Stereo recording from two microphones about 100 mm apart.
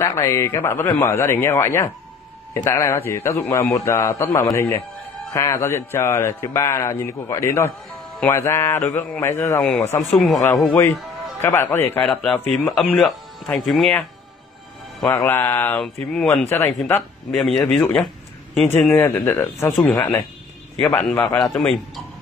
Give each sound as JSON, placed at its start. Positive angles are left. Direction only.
{"t": 0.0, "sound": "a man's voice", "side_deg": 30}
{"t": 9.6, "sound": "a man's voice", "side_deg": 5}
{"t": 11.4, "sound": "a man's voice", "side_deg": 25}
{"t": 15.0, "sound": "a man's voice", "side_deg": 25}
{"t": 15.8, "sound": "speech", "side_deg": 5}
{"t": 16.4, "sound": "a man's voice", "side_deg": 25}
{"t": 17.3, "sound": "speech", "side_deg": 5}
{"t": 17.8, "sound": "a sound", "side_deg": 5}
{"t": 18.9, "sound": "a man's voice", "side_deg": 20}
{"t": 19.7, "sound": "speech", "side_deg": 0}
{"t": 20.8, "sound": "a man's voice", "side_deg": 15}